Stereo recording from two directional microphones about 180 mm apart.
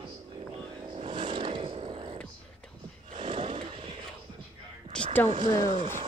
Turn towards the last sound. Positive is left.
turn(degrees=-25)  # may be behind; listen again after turning